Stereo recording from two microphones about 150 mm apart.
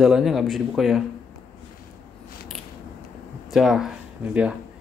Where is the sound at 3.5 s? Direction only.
Centre (ahead or behind).